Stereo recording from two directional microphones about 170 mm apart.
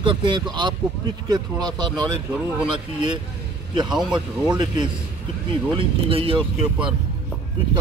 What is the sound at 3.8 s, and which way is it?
Speech, 5° right (ahead or behind).